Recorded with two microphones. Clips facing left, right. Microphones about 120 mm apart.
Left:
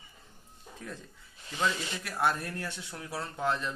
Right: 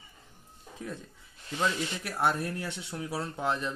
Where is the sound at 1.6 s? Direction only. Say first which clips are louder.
Right 1 dB; 10° right (ahead or behind).